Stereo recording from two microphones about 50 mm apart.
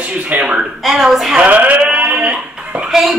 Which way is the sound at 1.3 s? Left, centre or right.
Right.